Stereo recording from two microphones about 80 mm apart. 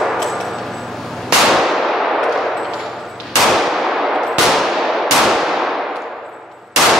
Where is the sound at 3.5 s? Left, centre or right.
Centre.